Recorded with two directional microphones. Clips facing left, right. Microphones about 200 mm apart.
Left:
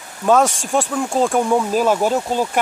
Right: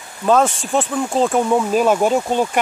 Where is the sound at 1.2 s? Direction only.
5° right (ahead or behind).